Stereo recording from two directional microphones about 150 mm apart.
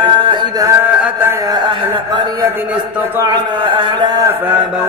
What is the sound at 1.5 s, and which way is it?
Speech, 30° right (ahead or behind).